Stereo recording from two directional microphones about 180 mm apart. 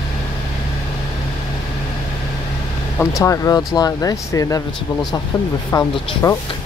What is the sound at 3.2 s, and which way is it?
Speech, 20° left (ahead or behind).